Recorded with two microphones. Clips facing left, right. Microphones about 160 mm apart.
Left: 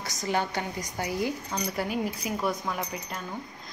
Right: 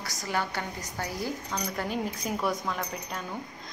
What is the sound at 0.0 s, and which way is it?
A woman's voice, 20° left (ahead or behind).